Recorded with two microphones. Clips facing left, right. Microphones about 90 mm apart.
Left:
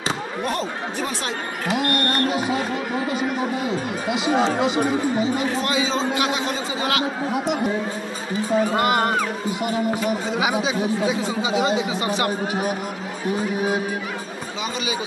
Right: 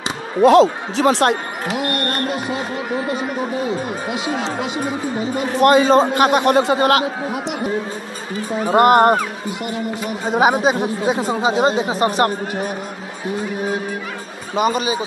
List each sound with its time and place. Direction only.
0.4 s speech: 90° right
1.7 s music: centre (ahead or behind)
4.1 s music: centre (ahead or behind)
5.6 s a man's voice: 55° right (ahead or behind)
8.7 s speech: 50° right (ahead or behind)
10.3 s speech: 50° right (ahead or behind)